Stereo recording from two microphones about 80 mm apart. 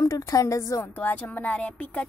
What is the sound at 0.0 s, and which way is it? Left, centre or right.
Speech, left.